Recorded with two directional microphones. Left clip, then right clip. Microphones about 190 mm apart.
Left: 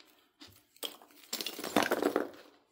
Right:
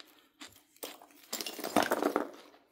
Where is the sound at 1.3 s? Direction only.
10° left (ahead or behind).